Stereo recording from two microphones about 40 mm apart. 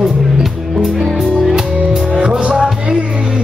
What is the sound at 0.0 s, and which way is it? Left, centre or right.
Music, centre.